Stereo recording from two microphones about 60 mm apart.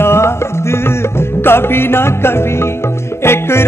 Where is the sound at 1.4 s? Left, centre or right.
Left.